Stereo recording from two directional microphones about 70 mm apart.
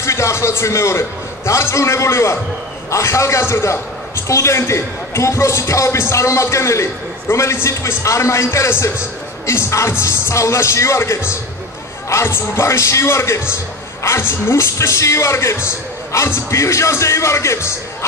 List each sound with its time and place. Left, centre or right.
0.0 s a man's voice: left